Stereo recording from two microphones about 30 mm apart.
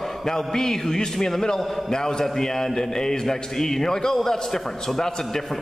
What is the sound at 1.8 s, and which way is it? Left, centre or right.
A man's voice, centre.